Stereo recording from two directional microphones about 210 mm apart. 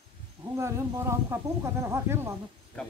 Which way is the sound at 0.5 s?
15° right (ahead or behind).